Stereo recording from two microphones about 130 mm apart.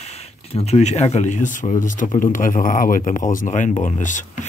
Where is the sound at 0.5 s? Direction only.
55° left (ahead or behind); by 1.7 s 70° left (ahead or behind).